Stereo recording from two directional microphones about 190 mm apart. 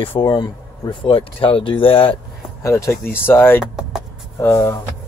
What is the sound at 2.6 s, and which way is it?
Speech, 15° left (ahead or behind).